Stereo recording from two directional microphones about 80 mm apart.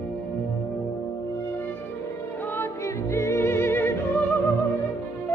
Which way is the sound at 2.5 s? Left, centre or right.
Left.